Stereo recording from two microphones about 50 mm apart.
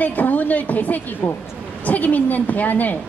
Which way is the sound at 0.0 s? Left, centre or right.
Left.